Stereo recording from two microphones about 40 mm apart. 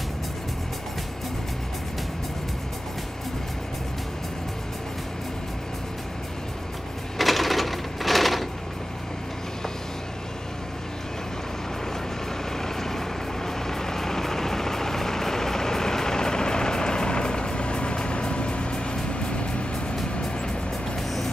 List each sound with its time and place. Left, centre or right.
7.2 s sewing machine: centre
12.5 s vehicle: centre; by 20.0 s left